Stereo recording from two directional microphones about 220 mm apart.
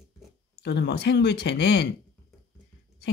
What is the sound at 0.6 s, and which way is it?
Speech, 50° left (ahead or behind).